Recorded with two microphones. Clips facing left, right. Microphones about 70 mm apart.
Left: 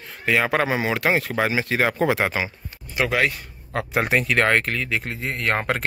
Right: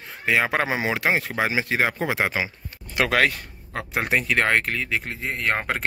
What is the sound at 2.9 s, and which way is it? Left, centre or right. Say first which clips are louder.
Speech: right 1 dB; right.